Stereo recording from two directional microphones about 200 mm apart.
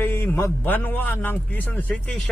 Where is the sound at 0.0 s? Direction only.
10° left (ahead or behind).